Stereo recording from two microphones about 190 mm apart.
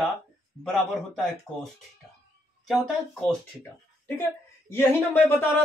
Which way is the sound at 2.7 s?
Centre (ahead or behind).